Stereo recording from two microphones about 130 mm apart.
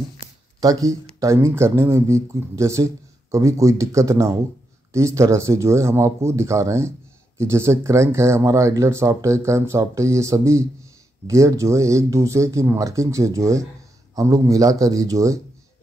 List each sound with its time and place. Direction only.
0.6 s speech: 25° right (ahead or behind)